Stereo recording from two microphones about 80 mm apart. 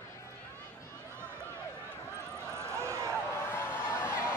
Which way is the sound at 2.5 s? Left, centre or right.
Right.